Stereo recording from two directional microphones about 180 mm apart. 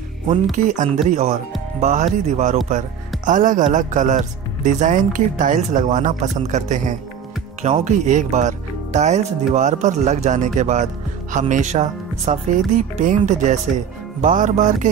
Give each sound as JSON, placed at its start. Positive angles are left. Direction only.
{"t": 0.5, "sound": "a man's voice", "side_deg": -45}